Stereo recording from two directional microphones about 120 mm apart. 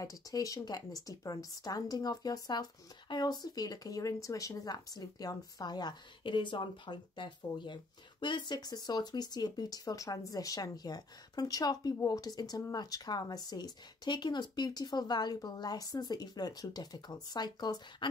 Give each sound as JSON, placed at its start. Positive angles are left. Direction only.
{"t": 0.0, "sound": "a woman's voice", "side_deg": 30}